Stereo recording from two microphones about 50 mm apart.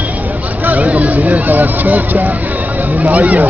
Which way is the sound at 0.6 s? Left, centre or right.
Right.